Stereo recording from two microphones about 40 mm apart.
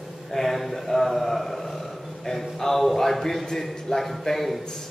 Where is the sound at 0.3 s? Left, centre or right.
Centre.